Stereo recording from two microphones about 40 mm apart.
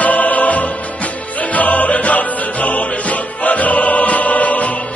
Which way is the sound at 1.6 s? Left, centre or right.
Left.